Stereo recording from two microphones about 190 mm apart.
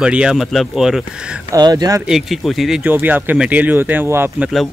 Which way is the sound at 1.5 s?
20° right (ahead or behind).